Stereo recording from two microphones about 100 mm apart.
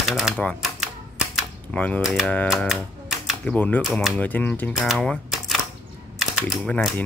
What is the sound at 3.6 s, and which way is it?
Speech, 15° left (ahead or behind).